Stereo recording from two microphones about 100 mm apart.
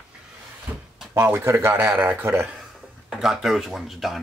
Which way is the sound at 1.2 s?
25° right (ahead or behind).